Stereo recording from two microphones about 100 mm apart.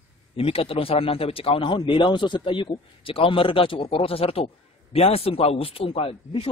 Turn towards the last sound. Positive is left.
turn(degrees=70)  # may be behind; listen again after turning